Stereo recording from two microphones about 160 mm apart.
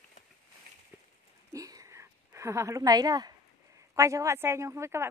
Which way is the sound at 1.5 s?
20° right (ahead or behind).